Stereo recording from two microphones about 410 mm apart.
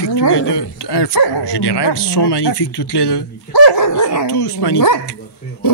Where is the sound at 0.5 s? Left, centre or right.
Left.